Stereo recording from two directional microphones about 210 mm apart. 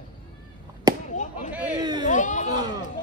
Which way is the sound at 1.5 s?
5° right (ahead or behind).